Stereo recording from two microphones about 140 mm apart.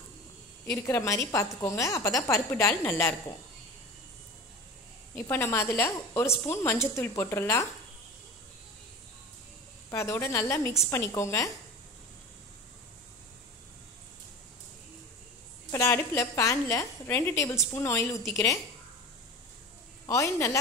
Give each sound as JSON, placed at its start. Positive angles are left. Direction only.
{"t": 0.7, "sound": "a woman's voice", "side_deg": 20}
{"t": 5.1, "sound": "a woman's voice", "side_deg": 20}
{"t": 9.8, "sound": "a woman's voice", "side_deg": 20}
{"t": 15.7, "sound": "a woman's voice", "side_deg": 20}
{"t": 20.1, "sound": "a woman's voice", "side_deg": 20}